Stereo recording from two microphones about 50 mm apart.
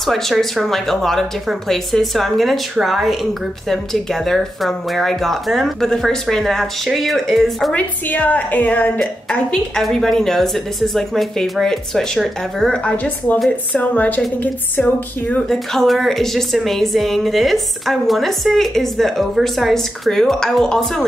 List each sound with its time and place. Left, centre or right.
0.0 s speech: centre
7.7 s a woman's voice: left
9.8 s speech: centre
12.9 s a woman's voice: left
15.4 s speech: centre